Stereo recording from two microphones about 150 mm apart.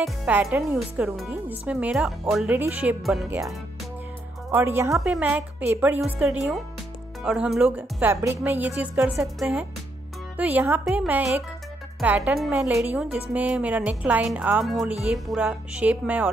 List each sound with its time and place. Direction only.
0.0 s a woman's voice: 10° right (ahead or behind)
0.7 s a woman's voice: centre (ahead or behind)
3.3 s a woman's voice: 20° right (ahead or behind)